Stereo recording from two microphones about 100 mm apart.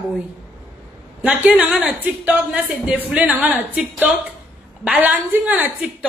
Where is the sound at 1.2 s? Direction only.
15° right (ahead or behind).